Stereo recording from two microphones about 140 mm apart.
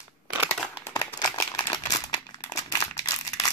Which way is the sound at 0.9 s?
20° left (ahead or behind).